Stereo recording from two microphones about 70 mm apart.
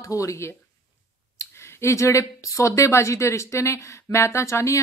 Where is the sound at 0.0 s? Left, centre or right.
Left.